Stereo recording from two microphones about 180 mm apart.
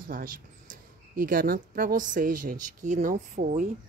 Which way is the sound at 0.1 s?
50° right (ahead or behind).